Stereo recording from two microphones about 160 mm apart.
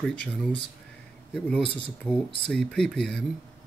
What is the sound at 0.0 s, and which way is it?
Speech, 5° left (ahead or behind).